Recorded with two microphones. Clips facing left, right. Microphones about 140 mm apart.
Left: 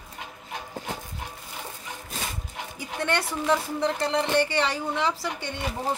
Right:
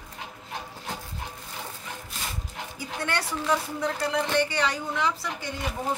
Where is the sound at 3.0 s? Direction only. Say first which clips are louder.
Left 3 dB; 25° left (ahead or behind).